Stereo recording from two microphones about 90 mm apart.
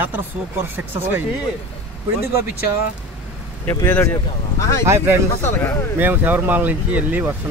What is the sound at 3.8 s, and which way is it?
Speech, 25° left (ahead or behind).